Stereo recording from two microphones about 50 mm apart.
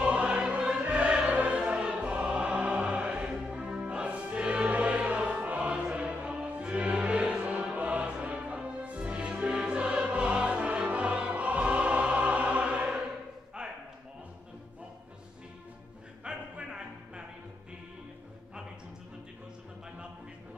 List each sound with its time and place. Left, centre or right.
0.0 s music: right
13.6 s a sound: centre
16.3 s music: centre